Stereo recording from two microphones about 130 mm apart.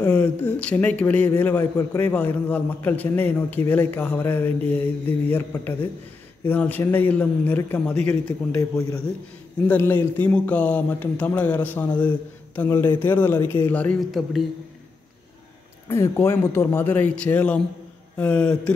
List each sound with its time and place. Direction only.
0.0 s a man's voice: 15° left (ahead or behind)
9.7 s a man's voice: 15° left (ahead or behind)
15.9 s a man's voice: 20° left (ahead or behind)